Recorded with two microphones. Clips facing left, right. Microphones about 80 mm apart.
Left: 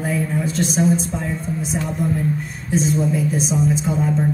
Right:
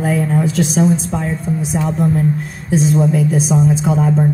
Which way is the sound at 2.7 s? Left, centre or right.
Right.